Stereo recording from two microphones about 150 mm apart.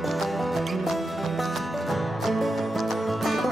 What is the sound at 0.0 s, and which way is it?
Music, centre (ahead or behind).